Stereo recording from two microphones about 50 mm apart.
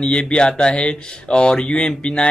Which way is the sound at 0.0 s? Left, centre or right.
Centre.